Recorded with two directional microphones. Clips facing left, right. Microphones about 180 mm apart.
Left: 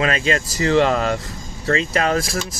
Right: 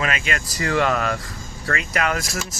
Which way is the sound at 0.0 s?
30° left (ahead or behind).